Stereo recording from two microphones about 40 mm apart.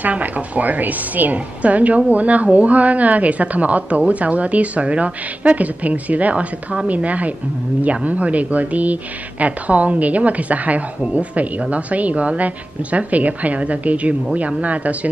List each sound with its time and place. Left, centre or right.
0.0 s a woman's voice: right